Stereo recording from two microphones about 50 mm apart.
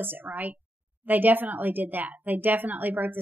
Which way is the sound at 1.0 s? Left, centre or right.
Right.